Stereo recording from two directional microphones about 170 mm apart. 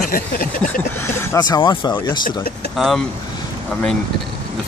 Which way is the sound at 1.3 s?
25° left (ahead or behind).